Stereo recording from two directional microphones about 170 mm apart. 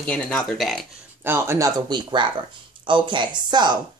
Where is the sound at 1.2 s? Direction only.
15° right (ahead or behind).